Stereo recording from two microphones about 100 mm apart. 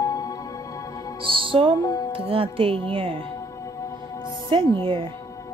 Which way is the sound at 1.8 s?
35° left (ahead or behind).